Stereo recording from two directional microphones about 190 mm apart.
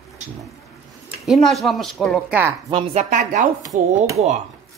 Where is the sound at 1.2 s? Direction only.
Centre (ahead or behind).